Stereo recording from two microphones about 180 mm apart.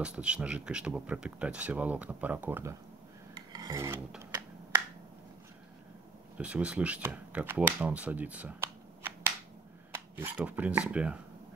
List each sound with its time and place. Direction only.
0.0 s speech: 5° right (ahead or behind)
3.3 s filing: 20° right (ahead or behind)
6.3 s speech: 5° right (ahead or behind)
9.9 s speech: 10° right (ahead or behind)